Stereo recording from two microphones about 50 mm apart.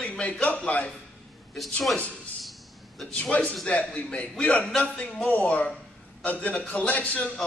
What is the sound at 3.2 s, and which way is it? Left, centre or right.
A man's voice, left.